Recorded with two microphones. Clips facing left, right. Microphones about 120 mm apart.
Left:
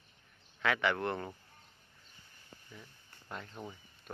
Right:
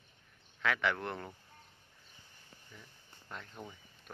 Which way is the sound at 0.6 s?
Centre (ahead or behind).